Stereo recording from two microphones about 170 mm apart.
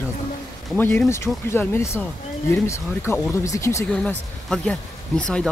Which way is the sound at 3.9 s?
5° left (ahead or behind).